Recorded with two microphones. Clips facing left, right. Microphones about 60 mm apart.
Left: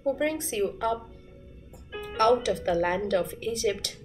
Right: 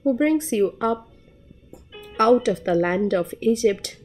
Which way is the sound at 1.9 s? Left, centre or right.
Left.